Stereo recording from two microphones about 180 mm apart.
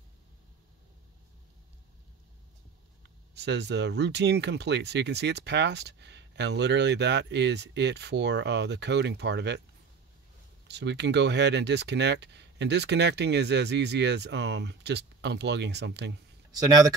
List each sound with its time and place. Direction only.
3.3 s speech: 70° right (ahead or behind)
10.7 s speech: 70° right (ahead or behind)
16.5 s speech: 20° right (ahead or behind)